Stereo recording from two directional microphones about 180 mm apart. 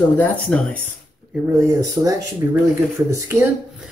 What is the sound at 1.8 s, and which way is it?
Speech, 20° right (ahead or behind).